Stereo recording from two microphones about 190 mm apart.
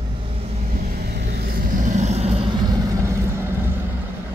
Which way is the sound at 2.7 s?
15° right (ahead or behind).